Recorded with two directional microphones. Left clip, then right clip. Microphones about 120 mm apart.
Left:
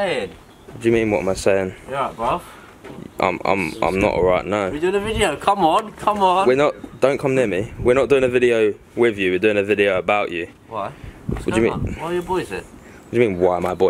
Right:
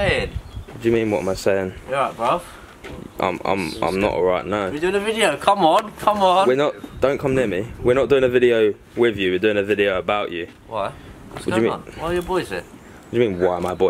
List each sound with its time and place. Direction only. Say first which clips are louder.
0.0 s speech: right 1 dB; 5° right (ahead or behind)
0.7 s speech: left 2 dB; 15° left (ahead or behind)
1.9 s speech: right 4 dB; 5° right (ahead or behind)
3.2 s speech: left 2 dB; 15° left (ahead or behind)
3.5 s speech: left 2 dB; centre (ahead or behind)
4.0 s speech: left 2 dB; 15° left (ahead or behind)
4.7 s speech: even; 5° right (ahead or behind)
6.5 s speech: left 2 dB; 20° left (ahead or behind)
12.1 s speech: right 1 dB; 5° right (ahead or behind)
13.1 s speech: left 2 dB; 20° left (ahead or behind)